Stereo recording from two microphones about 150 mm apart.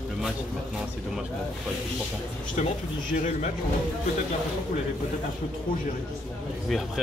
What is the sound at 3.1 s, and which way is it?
Speech, 55° left (ahead or behind).